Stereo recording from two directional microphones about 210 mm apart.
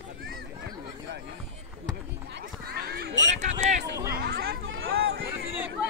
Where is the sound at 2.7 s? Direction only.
50° right (ahead or behind).